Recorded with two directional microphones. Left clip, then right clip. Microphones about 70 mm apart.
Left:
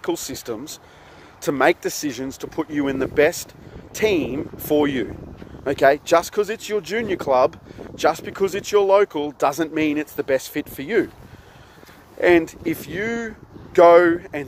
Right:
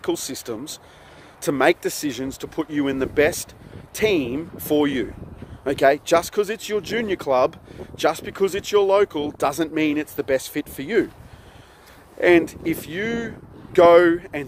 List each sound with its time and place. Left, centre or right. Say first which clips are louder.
0.0 s speech: even; right
0.3 s speech: left 1 dB; right
12.2 s speech: even; right